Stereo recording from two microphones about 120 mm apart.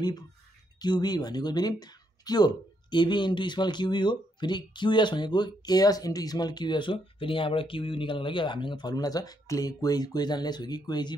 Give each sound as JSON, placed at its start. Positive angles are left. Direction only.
{"t": 0.7, "sound": "speech", "side_deg": 35}